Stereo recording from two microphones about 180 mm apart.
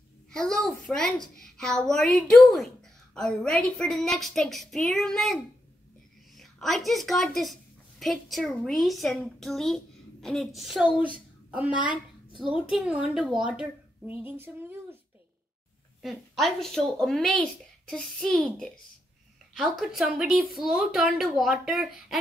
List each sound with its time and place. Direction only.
0.3 s a woman's voice: 5° left (ahead or behind); by 15.0 s 10° right (ahead or behind)
16.0 s speech: centre (ahead or behind)